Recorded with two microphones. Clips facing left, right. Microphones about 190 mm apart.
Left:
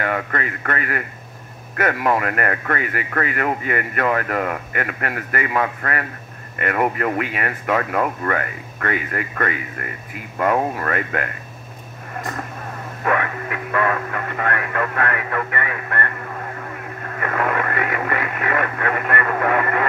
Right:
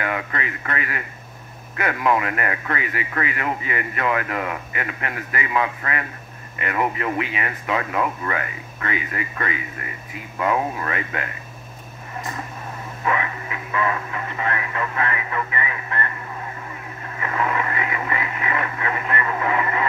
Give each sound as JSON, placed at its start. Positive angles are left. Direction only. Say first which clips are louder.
{"t": 0.0, "sound": "speech", "louder": "left 3 dB", "side_deg": 45}
{"t": 13.0, "sound": "radio", "louder": "left 3 dB", "side_deg": 55}